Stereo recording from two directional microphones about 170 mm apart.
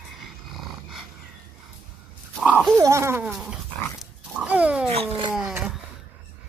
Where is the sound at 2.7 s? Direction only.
15° right (ahead or behind).